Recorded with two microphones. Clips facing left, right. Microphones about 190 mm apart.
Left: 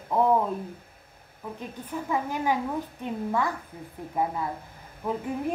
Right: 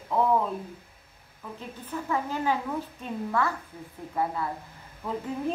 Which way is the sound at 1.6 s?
15° left (ahead or behind).